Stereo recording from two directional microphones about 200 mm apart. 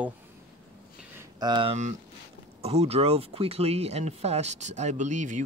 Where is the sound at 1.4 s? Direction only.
20° right (ahead or behind).